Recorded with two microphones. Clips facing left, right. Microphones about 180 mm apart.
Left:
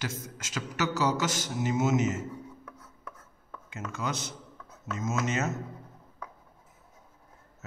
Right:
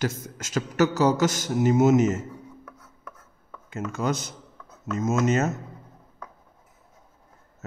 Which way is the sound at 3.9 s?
45° right (ahead or behind).